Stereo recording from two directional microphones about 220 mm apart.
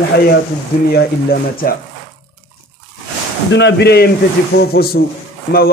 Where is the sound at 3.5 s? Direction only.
55° left (ahead or behind).